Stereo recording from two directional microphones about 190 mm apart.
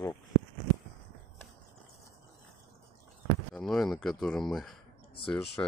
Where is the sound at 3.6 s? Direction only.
Centre (ahead or behind).